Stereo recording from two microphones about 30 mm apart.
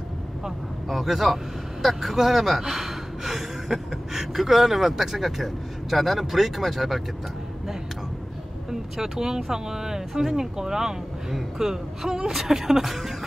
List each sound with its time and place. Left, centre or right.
1.0 s speech: centre
8.6 s speech: centre
12.3 s speech: centre